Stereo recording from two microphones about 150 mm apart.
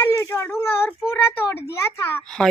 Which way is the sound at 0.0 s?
20° left (ahead or behind).